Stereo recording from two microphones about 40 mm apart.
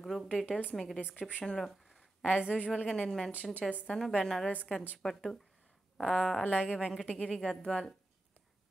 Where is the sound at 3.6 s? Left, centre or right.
Centre.